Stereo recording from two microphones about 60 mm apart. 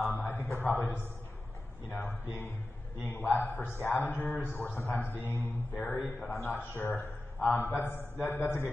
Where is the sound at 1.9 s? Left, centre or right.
Left.